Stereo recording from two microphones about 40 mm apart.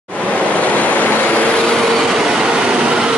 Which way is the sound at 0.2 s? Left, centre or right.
Left.